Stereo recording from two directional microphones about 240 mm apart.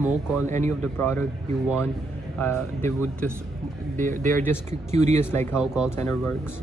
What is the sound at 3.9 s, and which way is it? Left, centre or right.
Speech, right.